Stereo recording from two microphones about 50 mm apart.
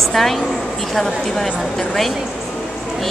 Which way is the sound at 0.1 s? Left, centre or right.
Centre.